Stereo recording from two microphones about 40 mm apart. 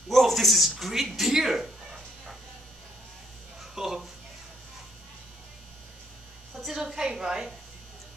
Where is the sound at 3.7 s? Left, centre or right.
Centre.